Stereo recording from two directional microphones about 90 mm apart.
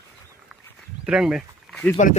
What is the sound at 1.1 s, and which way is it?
Speech, 5° right (ahead or behind).